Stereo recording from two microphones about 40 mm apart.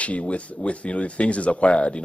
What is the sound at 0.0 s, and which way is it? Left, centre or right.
Speech, left.